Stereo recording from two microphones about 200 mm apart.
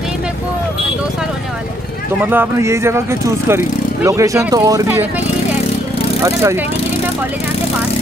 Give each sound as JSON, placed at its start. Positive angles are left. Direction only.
{"t": 2.2, "sound": "speech", "side_deg": -10}
{"t": 6.2, "sound": "speech", "side_deg": -15}